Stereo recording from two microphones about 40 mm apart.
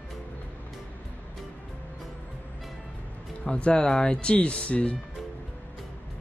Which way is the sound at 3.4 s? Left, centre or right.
Left.